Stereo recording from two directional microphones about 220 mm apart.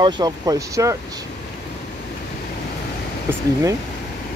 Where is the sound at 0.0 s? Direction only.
15° right (ahead or behind).